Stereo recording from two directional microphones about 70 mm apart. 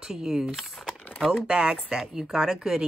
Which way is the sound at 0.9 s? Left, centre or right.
Centre.